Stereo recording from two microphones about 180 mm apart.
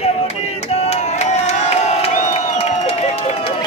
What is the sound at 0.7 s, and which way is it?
Crowd, 35° left (ahead or behind).